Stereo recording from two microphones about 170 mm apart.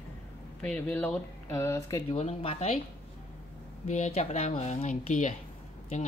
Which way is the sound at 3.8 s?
45° left (ahead or behind).